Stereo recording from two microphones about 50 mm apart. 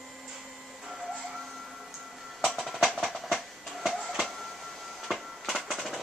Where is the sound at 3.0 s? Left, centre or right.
Centre.